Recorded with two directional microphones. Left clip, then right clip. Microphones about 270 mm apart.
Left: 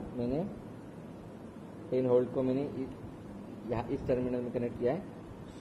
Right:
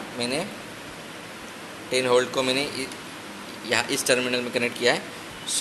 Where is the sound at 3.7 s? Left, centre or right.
Right.